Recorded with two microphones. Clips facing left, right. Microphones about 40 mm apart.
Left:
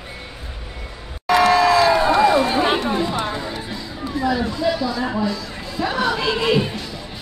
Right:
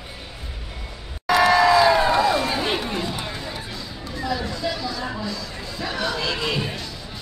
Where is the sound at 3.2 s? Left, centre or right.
Left.